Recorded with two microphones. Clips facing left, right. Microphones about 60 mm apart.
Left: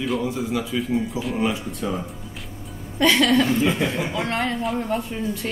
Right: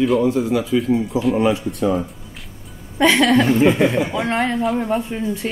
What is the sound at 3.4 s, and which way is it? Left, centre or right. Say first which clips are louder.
Speech: right 6 dB; right.